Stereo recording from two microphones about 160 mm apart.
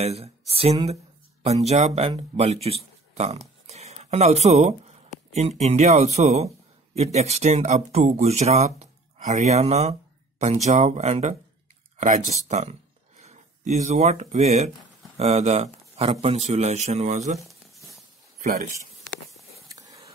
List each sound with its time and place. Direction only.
0.0 s speech: 40° right (ahead or behind)
17.7 s a sound: centre (ahead or behind)
18.5 s speech: 60° right (ahead or behind)
19.7 s whispering: 20° right (ahead or behind)